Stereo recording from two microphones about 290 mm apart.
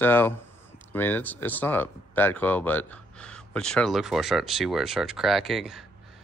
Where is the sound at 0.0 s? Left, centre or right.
Centre.